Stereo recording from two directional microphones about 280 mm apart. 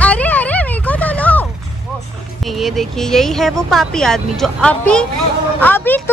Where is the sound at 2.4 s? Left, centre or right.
Centre.